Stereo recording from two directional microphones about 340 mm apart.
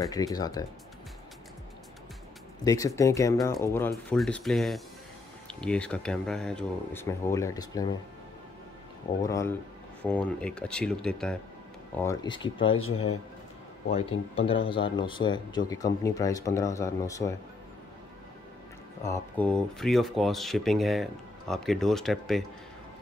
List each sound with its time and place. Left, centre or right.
0.0 s speech: centre
2.6 s speech: centre
9.2 s speech: centre
12.7 s speech: left
13.9 s speech: centre
19.0 s speech: centre